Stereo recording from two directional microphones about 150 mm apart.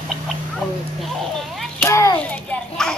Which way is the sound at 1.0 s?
Centre (ahead or behind).